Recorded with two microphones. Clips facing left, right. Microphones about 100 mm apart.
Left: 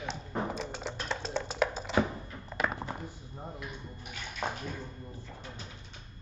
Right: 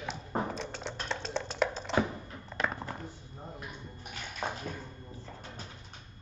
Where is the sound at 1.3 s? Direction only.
Centre (ahead or behind).